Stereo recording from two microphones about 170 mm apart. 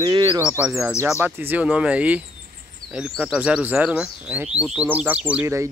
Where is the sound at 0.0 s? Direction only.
25° right (ahead or behind).